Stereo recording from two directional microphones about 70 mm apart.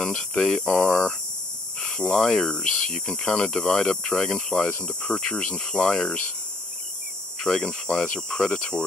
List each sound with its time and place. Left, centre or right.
0.0 s a sound: left
0.4 s speech: centre
1.8 s snake: left
2.0 s speech: centre
5.1 s speech: centre
7.3 s speech: centre
8.0 s speech: left